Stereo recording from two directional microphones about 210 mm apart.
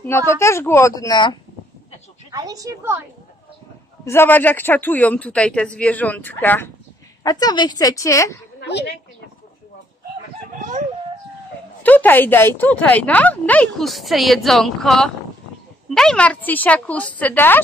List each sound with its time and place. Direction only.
0.3 s speech: 15° left (ahead or behind)
2.3 s a woman's voice: 15° right (ahead or behind)
4.0 s speech: 10° left (ahead or behind)
7.2 s speech: 20° left (ahead or behind)
8.5 s a sound: 55° left (ahead or behind)
11.8 s speech: 10° left (ahead or behind)